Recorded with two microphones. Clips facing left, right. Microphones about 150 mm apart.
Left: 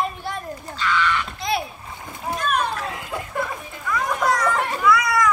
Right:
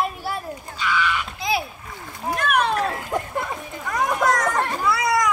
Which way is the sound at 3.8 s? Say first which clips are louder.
Right 1 dB; 50° right (ahead or behind).